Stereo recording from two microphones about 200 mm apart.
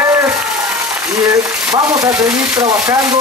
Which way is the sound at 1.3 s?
15° right (ahead or behind).